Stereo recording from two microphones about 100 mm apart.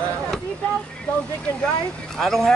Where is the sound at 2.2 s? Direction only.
5° left (ahead or behind).